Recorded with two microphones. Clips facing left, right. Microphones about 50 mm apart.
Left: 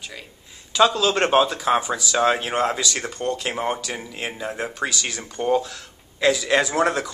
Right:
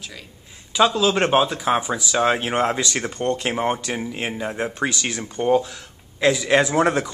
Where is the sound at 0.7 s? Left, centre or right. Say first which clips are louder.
Even; centre.